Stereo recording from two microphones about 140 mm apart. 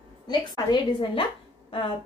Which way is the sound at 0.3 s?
30° left (ahead or behind).